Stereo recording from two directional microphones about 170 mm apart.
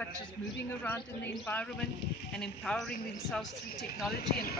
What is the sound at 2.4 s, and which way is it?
Speech, 5° left (ahead or behind).